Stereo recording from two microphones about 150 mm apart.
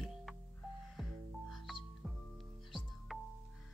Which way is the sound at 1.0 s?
Centre (ahead or behind).